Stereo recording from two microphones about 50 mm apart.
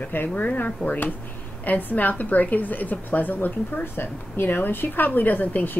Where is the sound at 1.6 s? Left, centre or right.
Left.